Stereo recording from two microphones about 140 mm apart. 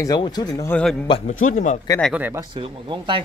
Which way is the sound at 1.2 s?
65° left (ahead or behind).